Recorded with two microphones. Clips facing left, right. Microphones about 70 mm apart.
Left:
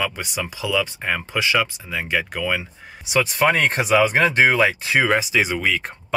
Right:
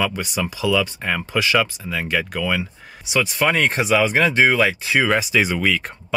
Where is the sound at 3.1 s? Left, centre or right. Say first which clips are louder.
Left 1 dB; left.